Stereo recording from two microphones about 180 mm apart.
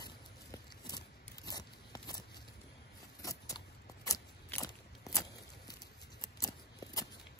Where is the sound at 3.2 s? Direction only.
20° left (ahead or behind).